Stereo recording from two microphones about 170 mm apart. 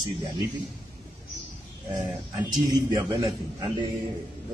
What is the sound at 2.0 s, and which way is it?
A man's voice, 25° right (ahead or behind).